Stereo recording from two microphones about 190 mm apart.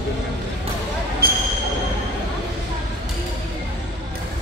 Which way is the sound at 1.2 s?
55° right (ahead or behind).